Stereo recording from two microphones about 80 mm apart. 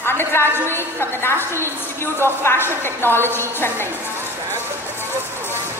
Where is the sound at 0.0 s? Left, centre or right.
Left.